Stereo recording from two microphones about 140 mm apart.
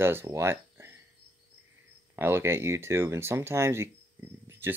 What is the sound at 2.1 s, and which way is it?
Speech, 15° right (ahead or behind).